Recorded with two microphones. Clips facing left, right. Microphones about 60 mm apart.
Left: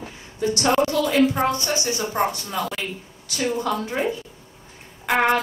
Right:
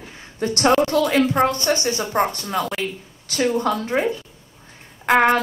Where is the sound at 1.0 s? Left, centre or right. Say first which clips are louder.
Right 2 dB; right.